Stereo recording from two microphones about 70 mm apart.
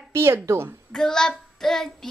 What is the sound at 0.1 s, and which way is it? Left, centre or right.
Speech, right.